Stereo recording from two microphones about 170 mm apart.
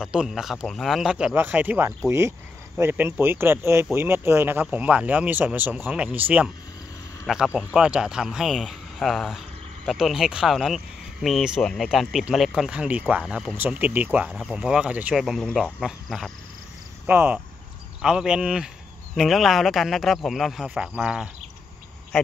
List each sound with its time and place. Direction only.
0.0 s speech: 5° right (ahead or behind)
17.0 s speech: 10° right (ahead or behind)
22.1 s a sound: 5° left (ahead or behind)